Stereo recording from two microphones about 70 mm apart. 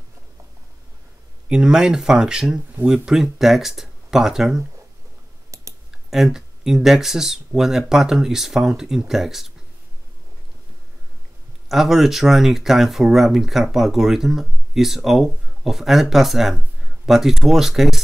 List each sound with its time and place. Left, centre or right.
1.5 s speech: centre
5.5 s clicking: right
6.0 s speech: centre
11.7 s speech: centre